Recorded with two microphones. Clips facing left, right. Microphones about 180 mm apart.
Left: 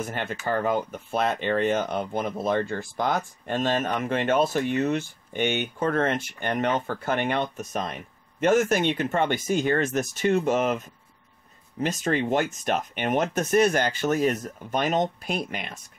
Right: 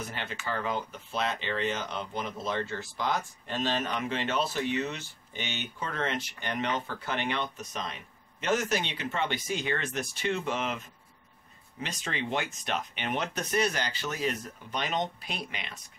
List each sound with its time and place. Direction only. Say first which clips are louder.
0.0 s speech: left 7 dB; 50° left (ahead or behind)
11.8 s speech: left 10 dB; 45° left (ahead or behind)